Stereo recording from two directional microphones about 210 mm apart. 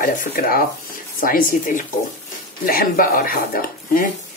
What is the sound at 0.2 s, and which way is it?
Speech, 40° left (ahead or behind).